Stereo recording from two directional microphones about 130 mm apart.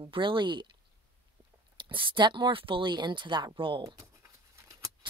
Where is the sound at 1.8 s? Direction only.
40° right (ahead or behind).